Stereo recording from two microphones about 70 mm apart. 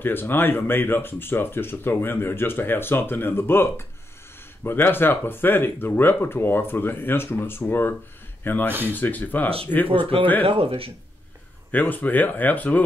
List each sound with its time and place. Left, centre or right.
0.0 s speech: left
11.7 s speech: left